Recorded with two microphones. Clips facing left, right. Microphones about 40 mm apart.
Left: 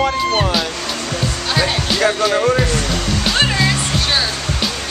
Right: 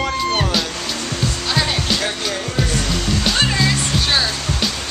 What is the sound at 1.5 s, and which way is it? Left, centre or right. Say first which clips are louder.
Music: left 2 dB; centre.